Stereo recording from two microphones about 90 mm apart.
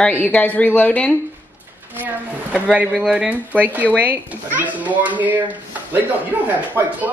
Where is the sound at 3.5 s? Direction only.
20° right (ahead or behind).